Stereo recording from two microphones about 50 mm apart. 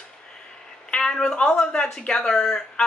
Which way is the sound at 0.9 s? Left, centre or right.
Centre.